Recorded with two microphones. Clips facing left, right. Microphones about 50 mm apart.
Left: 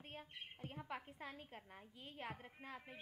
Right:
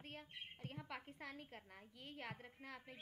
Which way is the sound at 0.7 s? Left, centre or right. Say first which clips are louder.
Left 3 dB; centre.